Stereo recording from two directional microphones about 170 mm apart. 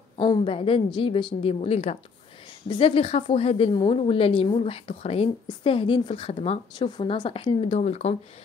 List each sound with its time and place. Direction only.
0.2 s speech: 30° left (ahead or behind)